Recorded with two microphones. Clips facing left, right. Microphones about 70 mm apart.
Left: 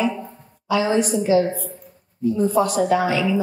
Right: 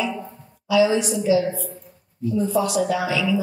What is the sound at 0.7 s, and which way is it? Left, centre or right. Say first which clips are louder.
A woman's voice: right 1 dB; left.